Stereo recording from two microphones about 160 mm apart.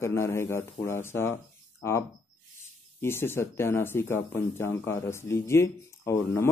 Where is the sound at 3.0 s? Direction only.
15° left (ahead or behind).